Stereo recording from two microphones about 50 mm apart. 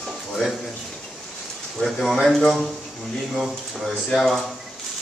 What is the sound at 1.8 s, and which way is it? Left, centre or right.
A man's voice, centre.